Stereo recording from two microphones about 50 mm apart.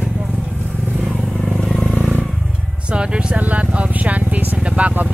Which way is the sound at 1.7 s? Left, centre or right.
Centre.